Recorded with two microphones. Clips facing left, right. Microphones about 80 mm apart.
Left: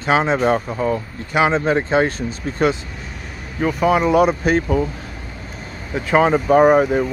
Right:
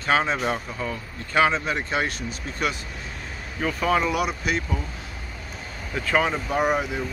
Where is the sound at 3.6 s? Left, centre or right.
Centre.